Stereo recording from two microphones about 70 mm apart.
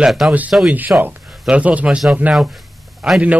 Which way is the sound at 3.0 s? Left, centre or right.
Centre.